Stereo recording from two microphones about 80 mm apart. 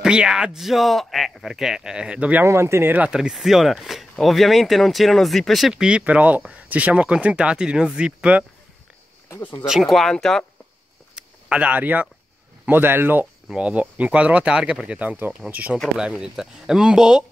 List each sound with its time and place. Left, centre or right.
0.0 s speech: centre
2.4 s speech: right
2.9 s speech: centre
3.2 s speech: centre
9.4 s speech: left
9.7 s speech: centre
11.1 s a sound: centre
12.6 s speech: right; by 17.2 s centre